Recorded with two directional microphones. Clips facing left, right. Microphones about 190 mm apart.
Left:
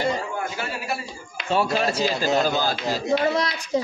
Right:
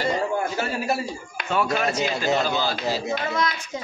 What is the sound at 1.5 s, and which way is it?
Speech, 30° left (ahead or behind).